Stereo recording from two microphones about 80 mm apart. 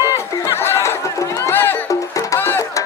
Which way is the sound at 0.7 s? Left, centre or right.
Left.